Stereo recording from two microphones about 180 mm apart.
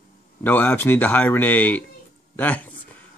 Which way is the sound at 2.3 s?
10° left (ahead or behind).